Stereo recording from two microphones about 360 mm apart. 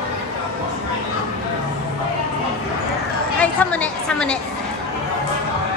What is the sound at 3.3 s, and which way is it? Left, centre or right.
A woman's voice, centre.